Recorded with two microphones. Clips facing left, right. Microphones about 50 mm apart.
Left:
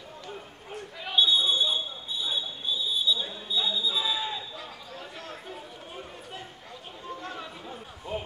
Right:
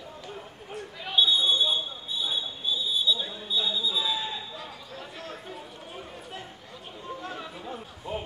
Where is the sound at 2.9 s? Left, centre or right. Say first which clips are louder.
Right 1 dB; centre.